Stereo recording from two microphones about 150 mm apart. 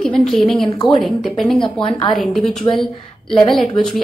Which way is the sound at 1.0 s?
Centre (ahead or behind).